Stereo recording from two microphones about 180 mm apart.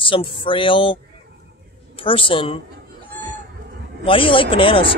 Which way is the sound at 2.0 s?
30° left (ahead or behind).